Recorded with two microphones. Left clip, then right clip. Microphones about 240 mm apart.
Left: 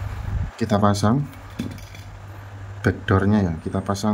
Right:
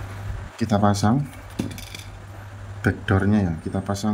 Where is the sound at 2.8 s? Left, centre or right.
Centre.